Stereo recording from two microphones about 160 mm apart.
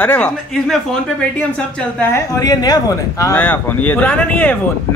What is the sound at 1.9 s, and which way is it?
Speech, 15° left (ahead or behind).